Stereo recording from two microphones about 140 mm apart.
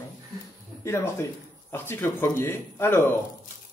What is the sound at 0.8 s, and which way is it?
Speech, 20° left (ahead or behind).